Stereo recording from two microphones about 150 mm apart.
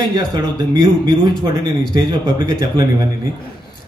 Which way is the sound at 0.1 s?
25° right (ahead or behind).